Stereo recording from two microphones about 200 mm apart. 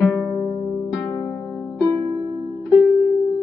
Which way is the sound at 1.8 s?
15° left (ahead or behind).